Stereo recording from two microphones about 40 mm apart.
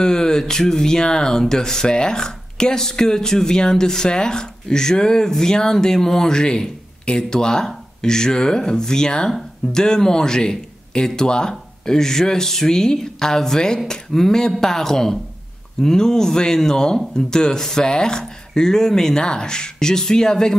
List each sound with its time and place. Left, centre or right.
0.0 s speech: centre